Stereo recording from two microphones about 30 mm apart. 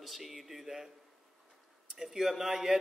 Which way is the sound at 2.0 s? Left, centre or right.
Centre.